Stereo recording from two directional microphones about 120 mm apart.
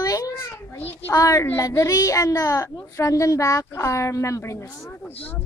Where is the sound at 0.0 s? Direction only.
30° left (ahead or behind).